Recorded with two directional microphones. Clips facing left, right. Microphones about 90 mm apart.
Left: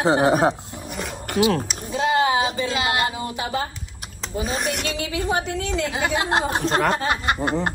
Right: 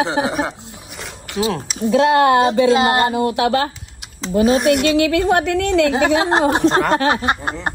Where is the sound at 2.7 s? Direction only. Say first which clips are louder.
Right 8 dB; 30° right (ahead or behind).